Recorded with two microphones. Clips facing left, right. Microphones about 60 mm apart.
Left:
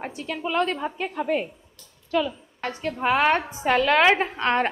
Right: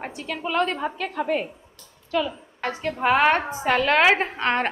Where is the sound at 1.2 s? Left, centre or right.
Centre.